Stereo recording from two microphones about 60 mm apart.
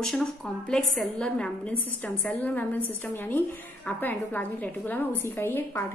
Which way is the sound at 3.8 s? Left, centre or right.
Left.